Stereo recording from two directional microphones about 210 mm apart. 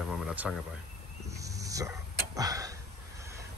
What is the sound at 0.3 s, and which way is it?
Speech, 5° right (ahead or behind).